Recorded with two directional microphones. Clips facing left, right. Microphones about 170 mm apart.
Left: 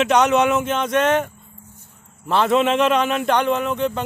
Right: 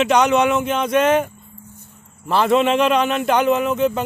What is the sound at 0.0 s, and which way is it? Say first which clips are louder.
A man's voice: right 1 dB; centre (ahead or behind).